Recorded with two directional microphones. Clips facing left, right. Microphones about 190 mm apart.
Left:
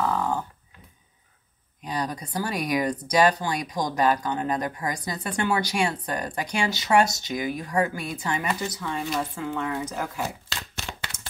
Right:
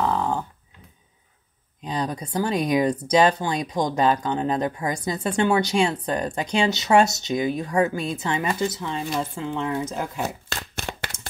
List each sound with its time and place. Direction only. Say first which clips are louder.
0.0 s dog: right 2 dB; 20° right (ahead or behind)
1.8 s speech: right 2 dB; 25° right (ahead or behind)
10.5 s a sound: right 4 dB; 55° right (ahead or behind)